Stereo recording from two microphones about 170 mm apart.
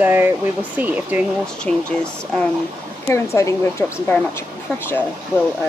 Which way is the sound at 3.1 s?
15° left (ahead or behind).